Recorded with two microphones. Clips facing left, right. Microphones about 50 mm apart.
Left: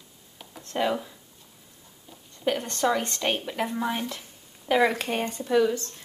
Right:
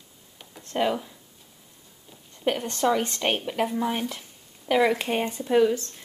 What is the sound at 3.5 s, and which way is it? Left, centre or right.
A woman's voice, centre.